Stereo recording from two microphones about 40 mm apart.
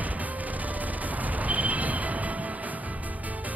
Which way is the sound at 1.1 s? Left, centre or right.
Right.